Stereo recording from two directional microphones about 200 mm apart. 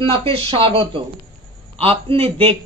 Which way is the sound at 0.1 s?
25° right (ahead or behind).